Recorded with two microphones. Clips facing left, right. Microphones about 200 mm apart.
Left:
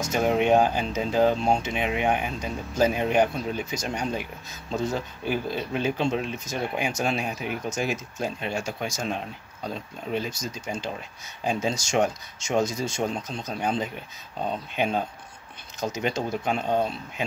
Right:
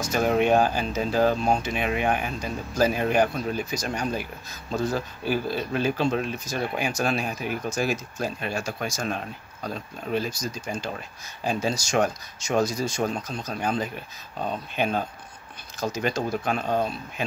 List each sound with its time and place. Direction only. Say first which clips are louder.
0.0 s speech: right 1 dB; 20° left (ahead or behind)